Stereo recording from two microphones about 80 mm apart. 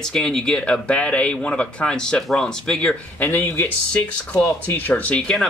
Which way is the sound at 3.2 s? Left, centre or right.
Left.